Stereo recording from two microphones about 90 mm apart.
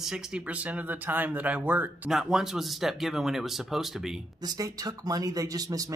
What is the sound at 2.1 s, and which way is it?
Speech, 5° right (ahead or behind).